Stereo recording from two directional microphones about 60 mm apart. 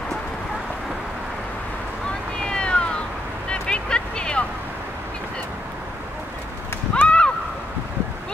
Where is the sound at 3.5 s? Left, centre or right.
Centre.